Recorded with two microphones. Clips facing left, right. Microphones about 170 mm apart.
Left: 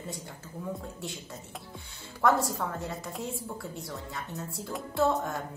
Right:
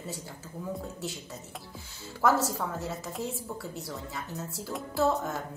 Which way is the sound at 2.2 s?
Centre (ahead or behind).